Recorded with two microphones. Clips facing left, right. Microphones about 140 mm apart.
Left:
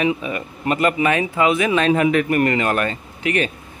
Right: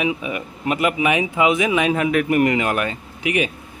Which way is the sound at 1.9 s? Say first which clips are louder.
Left 2 dB; centre (ahead or behind).